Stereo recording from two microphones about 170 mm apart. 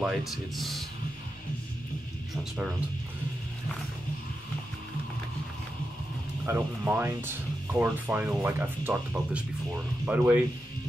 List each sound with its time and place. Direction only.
0.0 s speech: centre (ahead or behind)
6.4 s speech: 15° right (ahead or behind)